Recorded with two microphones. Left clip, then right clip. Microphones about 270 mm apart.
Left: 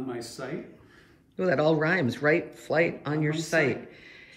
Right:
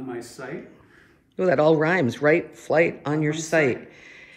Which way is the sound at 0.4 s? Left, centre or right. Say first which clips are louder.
Right 1 dB; centre.